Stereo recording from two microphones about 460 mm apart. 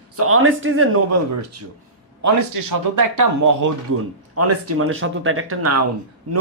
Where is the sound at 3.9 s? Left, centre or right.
Right.